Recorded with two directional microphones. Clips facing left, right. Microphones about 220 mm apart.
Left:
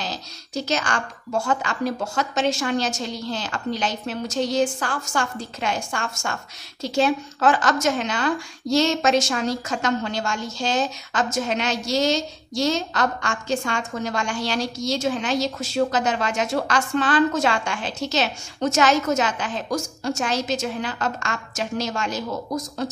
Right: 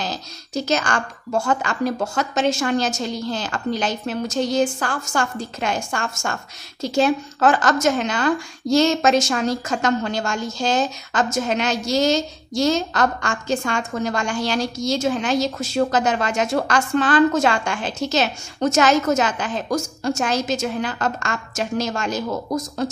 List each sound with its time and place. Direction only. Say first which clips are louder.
0.0 s a woman's voice: right 3 dB; 45° right (ahead or behind)